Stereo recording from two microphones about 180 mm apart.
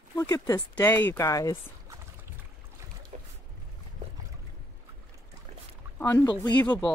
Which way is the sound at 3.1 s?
45° right (ahead or behind).